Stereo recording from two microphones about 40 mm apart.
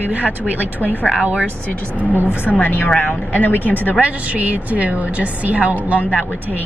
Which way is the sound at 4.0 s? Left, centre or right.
Right.